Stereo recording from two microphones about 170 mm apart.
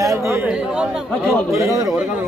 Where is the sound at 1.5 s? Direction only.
20° right (ahead or behind).